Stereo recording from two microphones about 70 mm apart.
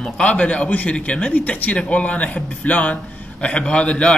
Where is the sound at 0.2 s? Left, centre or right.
Centre.